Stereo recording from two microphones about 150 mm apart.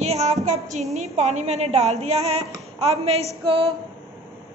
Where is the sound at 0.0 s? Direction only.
45° right (ahead or behind).